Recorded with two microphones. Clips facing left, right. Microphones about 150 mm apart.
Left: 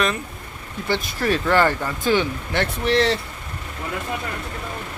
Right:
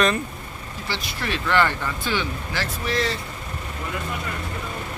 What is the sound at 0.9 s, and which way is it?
Speech, 45° left (ahead or behind).